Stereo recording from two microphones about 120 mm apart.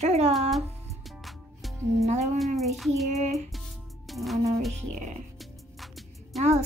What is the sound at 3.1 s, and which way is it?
Speech, 70° right (ahead or behind).